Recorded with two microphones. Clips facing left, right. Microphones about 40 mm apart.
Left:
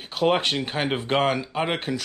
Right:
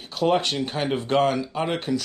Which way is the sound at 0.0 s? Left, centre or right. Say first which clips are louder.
Even; left.